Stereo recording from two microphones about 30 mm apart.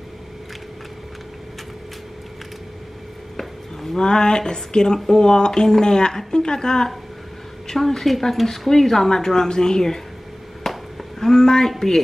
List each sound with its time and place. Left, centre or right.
3.3 s a sound: centre
4.0 s speech: left
7.6 s speech: centre
10.6 s chop: centre
11.1 s speech: centre